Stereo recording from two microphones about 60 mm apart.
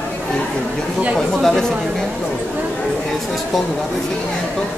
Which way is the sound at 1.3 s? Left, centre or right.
Centre.